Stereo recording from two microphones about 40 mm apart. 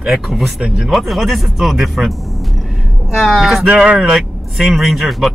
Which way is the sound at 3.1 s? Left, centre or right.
Centre.